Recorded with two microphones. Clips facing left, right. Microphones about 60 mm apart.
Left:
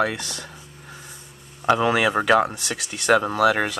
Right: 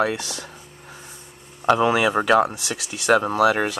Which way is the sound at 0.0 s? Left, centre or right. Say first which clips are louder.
Right 1 dB; centre.